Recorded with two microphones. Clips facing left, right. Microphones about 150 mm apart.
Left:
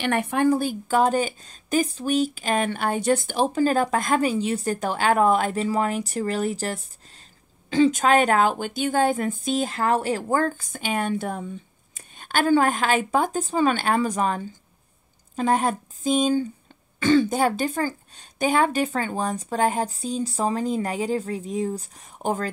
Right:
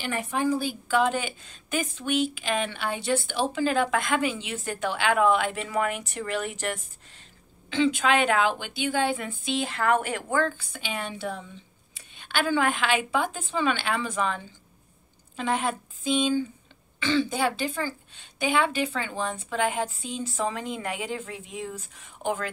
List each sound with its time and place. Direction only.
0.0 s a woman's voice: 65° left (ahead or behind); by 22.5 s 40° left (ahead or behind)